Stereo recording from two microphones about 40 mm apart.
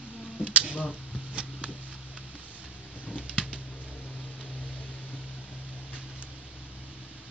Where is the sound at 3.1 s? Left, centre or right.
Right.